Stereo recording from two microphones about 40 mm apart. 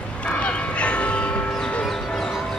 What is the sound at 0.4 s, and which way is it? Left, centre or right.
Music, left.